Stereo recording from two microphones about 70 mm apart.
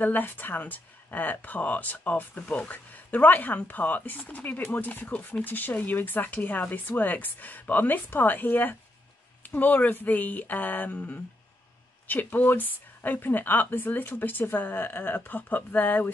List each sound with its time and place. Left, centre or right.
0.0 s speech: left